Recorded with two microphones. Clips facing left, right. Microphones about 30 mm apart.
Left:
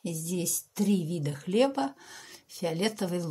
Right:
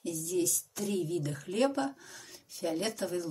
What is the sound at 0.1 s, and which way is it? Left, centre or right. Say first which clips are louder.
A woman's voice: right 4 dB; centre.